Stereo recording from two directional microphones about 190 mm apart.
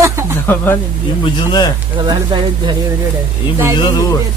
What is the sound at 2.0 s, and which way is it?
Speech, 25° right (ahead or behind).